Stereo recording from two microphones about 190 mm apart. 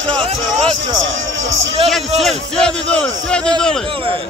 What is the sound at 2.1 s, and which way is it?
A man's voice, centre (ahead or behind).